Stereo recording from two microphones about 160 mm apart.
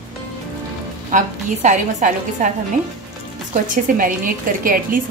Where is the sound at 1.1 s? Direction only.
55° right (ahead or behind).